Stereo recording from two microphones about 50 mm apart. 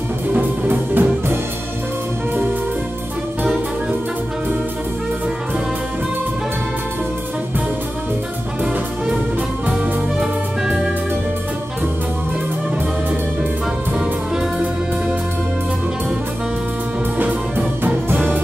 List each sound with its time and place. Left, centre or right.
0.3 s music: right
17.2 s music: right